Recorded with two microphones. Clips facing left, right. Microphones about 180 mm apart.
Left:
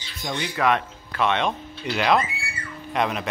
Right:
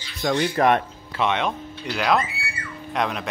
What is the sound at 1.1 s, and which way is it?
Speech, 15° right (ahead or behind).